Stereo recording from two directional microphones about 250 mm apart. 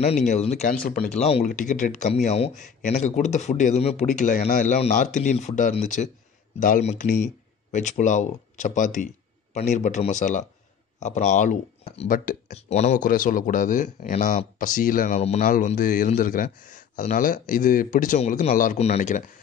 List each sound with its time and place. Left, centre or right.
0.0 s speech: left